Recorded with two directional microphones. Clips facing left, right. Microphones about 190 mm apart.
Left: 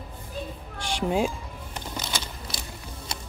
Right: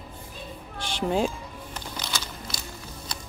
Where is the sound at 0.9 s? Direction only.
10° left (ahead or behind).